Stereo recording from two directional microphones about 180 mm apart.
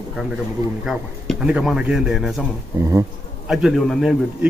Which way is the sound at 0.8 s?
Centre (ahead or behind).